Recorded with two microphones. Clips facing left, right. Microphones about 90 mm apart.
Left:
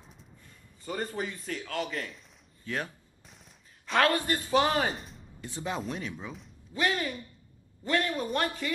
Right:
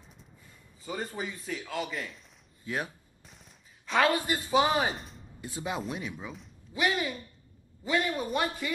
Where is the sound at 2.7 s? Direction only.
15° right (ahead or behind).